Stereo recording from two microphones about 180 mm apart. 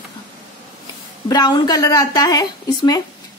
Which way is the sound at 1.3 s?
25° left (ahead or behind).